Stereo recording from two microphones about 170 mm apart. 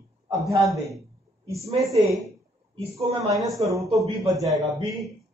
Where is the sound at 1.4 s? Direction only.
20° right (ahead or behind).